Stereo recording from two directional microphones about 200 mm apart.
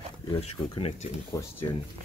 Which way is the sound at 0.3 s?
30° left (ahead or behind).